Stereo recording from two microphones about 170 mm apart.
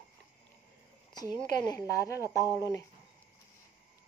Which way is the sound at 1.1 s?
25° left (ahead or behind).